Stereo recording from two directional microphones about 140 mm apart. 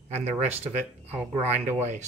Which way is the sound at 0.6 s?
45° right (ahead or behind).